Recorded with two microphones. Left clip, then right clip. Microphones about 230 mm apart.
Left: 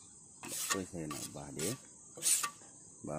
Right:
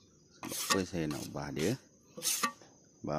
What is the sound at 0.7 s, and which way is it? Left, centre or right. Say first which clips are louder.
Stir: right 7 dB; right.